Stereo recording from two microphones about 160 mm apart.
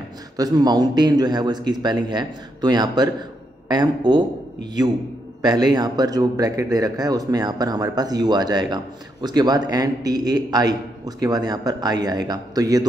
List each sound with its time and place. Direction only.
0.4 s a man's voice: 25° right (ahead or behind)
5.4 s a man's voice: 25° right (ahead or behind)